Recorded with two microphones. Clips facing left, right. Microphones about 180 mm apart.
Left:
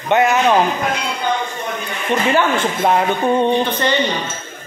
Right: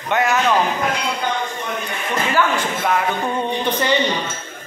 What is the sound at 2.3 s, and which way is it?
Speech, 25° left (ahead or behind).